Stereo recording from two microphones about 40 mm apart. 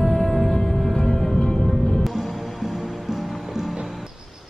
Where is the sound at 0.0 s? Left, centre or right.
Centre.